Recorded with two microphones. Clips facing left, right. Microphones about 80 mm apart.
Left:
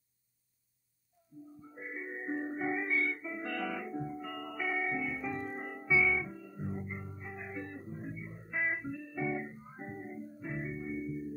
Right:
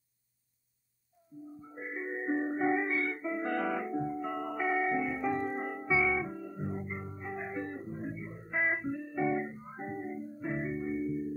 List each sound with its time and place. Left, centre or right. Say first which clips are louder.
1.6 s music: right 4 dB; right
5.8 s music: even; right
11.0 s music: right 5 dB; centre